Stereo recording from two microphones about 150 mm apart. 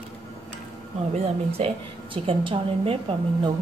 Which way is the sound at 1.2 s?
40° right (ahead or behind).